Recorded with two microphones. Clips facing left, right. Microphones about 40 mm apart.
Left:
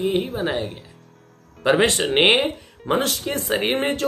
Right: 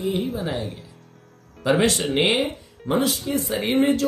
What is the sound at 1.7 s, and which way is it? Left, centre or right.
Speech, left.